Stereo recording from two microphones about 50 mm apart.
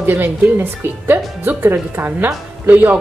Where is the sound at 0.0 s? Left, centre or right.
Right.